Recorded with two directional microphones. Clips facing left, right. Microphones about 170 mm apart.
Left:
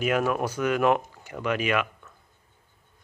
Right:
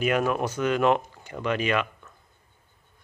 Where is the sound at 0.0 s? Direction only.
5° left (ahead or behind).